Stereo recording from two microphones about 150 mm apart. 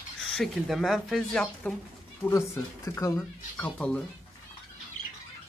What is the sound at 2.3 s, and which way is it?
Speech, 20° left (ahead or behind).